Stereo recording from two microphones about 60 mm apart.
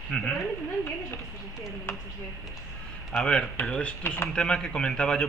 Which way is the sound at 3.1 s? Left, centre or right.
Centre.